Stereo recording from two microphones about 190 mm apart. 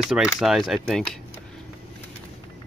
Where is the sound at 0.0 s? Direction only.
5° right (ahead or behind).